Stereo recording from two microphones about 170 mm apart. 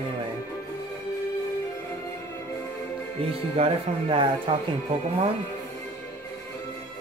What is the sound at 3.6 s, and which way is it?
Speech, 30° right (ahead or behind).